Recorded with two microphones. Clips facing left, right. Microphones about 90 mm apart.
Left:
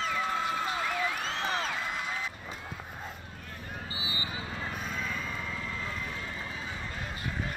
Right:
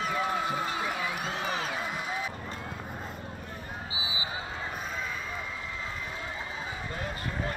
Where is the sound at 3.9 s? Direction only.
Centre (ahead or behind).